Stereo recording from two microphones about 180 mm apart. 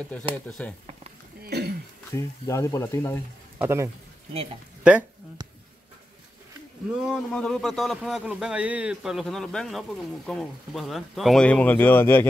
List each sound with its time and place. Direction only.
0.5 s a man's voice: 5° left (ahead or behind)
1.4 s throat clearing: 60° right (ahead or behind)
2.1 s speech: 15° left (ahead or behind)
3.5 s speech: 15° right (ahead or behind)
6.9 s a man's voice: centre (ahead or behind)